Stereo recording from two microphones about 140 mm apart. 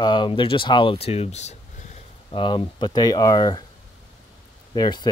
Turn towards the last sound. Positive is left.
turn(degrees=30)  # may be behind; listen again after turning